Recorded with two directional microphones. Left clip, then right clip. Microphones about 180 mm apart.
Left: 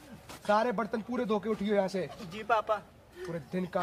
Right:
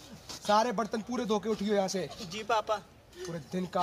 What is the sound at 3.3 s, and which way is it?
Speech, 20° left (ahead or behind).